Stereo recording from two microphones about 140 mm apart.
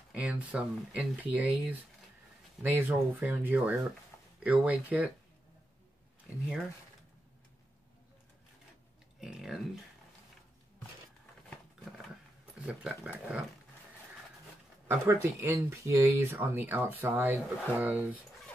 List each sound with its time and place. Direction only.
0.1 s speech: 10° right (ahead or behind)
9.2 s speech: 5° right (ahead or behind)
12.6 s speech: 10° right (ahead or behind)
14.9 s speech: 15° right (ahead or behind)